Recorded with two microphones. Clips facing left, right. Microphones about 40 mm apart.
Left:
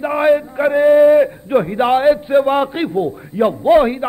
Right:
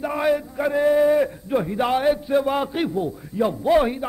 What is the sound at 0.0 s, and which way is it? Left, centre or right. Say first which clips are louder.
A man's voice: left 7 dB; left.